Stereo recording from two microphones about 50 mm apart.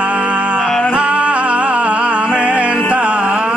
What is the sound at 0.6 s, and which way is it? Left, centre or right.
Music, centre.